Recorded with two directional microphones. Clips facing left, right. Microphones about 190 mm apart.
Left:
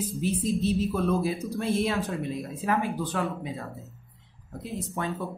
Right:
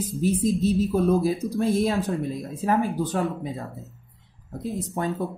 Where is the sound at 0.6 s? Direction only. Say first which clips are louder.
Right 4 dB; 40° right (ahead or behind).